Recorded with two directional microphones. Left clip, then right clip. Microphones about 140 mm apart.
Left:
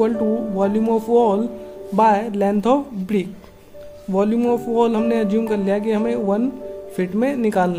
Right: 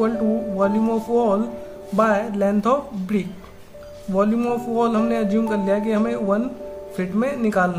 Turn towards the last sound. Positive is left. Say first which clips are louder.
# left 2 dB
turn(degrees=35)  # may be behind; listen again after turning